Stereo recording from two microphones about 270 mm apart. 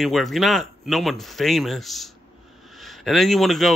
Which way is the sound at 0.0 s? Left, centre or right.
Centre.